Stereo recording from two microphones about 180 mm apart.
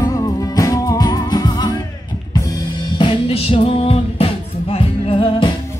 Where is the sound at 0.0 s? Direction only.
20° left (ahead or behind).